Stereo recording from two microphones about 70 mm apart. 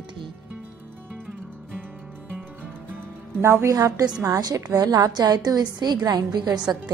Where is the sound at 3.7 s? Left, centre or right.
Right.